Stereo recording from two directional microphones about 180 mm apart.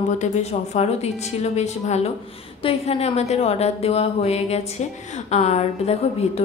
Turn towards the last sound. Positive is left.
turn(degrees=35)  # may be behind; listen again after turning